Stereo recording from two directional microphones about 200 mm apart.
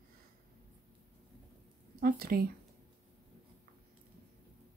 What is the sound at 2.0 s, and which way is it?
Speech, 50° right (ahead or behind).